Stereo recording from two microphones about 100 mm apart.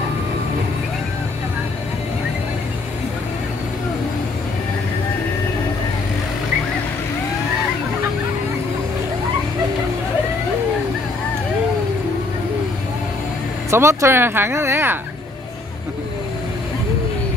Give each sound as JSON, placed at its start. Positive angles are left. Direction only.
{"t": 13.7, "sound": "speech", "side_deg": -25}